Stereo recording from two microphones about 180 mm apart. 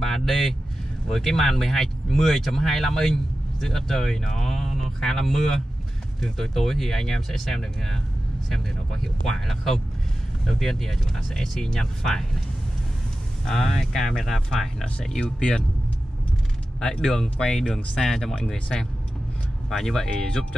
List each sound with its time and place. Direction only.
0.0 s speech: centre (ahead or behind)
13.5 s speech: centre (ahead or behind)
16.8 s speech: 5° left (ahead or behind)